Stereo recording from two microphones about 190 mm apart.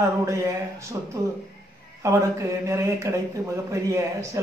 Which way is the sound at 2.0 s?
15° right (ahead or behind).